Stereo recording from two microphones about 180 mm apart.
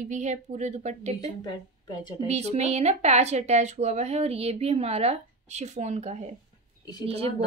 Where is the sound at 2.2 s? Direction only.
35° right (ahead or behind).